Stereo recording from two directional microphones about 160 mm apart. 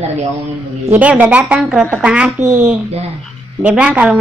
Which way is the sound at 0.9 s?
10° right (ahead or behind).